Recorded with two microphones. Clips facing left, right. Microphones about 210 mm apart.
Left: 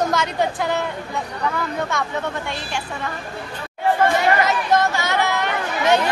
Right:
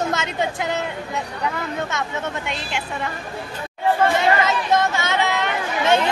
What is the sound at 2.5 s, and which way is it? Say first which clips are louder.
Speech: even; 20° right (ahead or behind).